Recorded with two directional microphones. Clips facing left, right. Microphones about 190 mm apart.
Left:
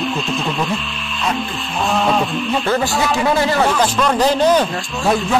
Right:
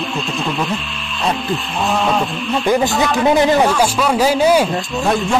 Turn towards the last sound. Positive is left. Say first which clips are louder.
# right 2 dB
turn(degrees=-10)  # may be behind; listen again after turning